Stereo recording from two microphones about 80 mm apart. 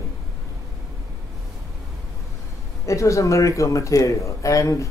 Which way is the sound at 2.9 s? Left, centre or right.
Left.